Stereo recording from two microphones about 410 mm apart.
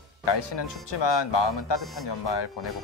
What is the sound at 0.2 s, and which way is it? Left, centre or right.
Speech, left.